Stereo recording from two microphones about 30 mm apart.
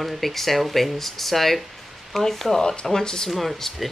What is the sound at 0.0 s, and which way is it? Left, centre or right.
Speech, centre.